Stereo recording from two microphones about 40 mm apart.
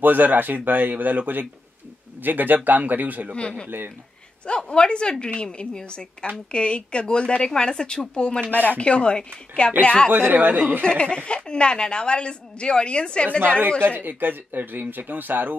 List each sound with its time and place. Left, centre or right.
0.0 s speech: right
3.3 s a woman's voice: left
3.6 s speech: right
4.6 s a woman's voice: left
10.1 s speech: right
10.8 s a woman's voice: left
13.6 s speech: right
13.9 s speech: right